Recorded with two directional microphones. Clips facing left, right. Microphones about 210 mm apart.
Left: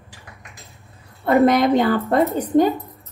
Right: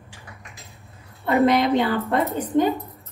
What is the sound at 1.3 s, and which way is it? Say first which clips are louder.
A woman's voice: left 3 dB; 45° left (ahead or behind).